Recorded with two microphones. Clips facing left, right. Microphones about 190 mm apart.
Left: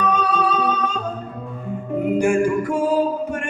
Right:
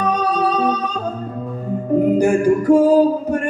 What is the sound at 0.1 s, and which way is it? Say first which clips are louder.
Music: right 2 dB; 40° right (ahead or behind).